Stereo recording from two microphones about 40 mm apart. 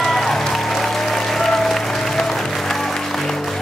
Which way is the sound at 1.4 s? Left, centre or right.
Centre.